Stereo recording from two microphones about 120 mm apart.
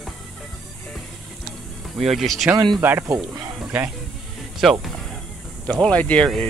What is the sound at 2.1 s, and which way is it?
Speech, centre (ahead or behind).